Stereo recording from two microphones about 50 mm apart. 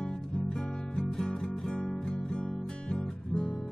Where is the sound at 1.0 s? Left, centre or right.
Centre.